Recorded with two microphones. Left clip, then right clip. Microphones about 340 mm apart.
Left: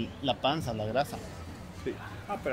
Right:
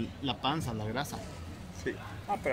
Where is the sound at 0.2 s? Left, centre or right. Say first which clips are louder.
Left 4 dB; centre.